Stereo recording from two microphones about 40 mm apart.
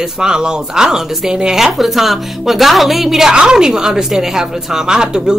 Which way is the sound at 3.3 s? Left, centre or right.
Centre.